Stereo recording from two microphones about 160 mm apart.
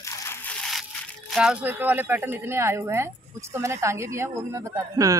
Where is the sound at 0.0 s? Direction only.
15° left (ahead or behind).